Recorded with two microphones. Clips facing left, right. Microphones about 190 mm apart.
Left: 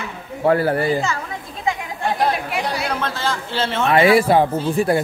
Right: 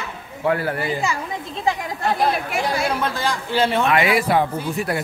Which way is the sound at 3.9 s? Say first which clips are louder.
Left 4 dB; 30° left (ahead or behind).